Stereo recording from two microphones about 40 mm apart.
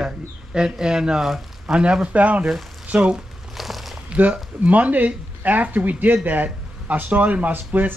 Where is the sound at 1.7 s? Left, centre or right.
Centre.